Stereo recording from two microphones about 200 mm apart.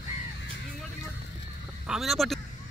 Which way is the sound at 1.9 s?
Centre (ahead or behind).